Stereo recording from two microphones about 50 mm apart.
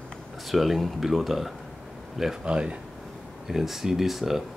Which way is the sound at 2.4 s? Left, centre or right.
Centre.